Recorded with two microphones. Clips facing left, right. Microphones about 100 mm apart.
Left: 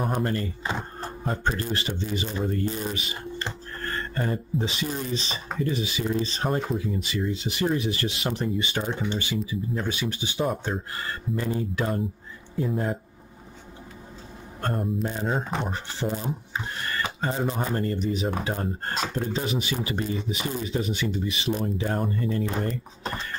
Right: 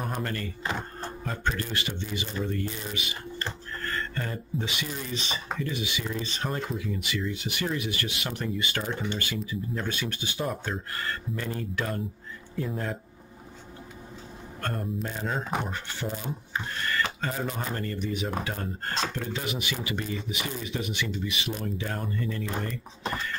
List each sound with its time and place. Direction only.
0.1 s speech: 25° left (ahead or behind)
1.2 s speech: 35° left (ahead or behind); by 12.9 s 15° left (ahead or behind)
15.0 s speech: 20° left (ahead or behind)
17.0 s a sound: 25° left (ahead or behind)
17.5 s speech: 25° left (ahead or behind)